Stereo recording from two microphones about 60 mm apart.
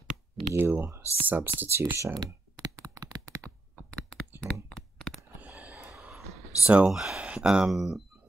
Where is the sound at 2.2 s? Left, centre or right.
Right.